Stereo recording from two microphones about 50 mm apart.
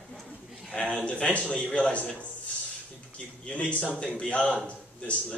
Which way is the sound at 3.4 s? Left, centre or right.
Left.